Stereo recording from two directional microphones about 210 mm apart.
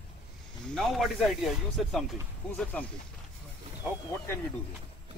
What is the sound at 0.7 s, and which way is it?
Speech, centre (ahead or behind).